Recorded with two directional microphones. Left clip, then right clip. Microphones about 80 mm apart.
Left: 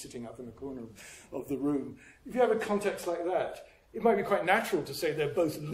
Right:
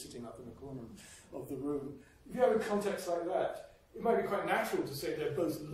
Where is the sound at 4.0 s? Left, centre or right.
Left.